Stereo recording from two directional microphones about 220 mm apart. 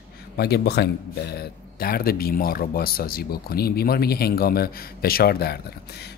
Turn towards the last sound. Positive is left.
turn(degrees=45)  # may be behind; listen again after turning